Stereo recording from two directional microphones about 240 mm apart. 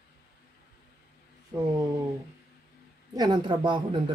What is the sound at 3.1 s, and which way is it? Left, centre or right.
Speech, centre.